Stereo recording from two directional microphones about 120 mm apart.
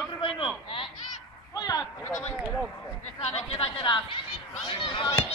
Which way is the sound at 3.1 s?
55° left (ahead or behind).